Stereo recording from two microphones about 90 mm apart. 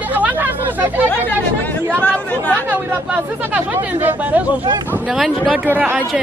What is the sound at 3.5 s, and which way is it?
Speech, 20° right (ahead or behind).